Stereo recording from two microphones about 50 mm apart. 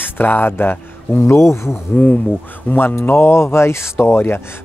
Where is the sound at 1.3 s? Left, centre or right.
Left.